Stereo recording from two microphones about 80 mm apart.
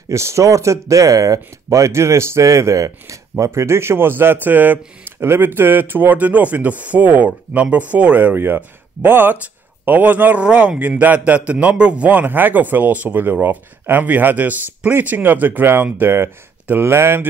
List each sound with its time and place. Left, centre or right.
0.1 s a man's voice: right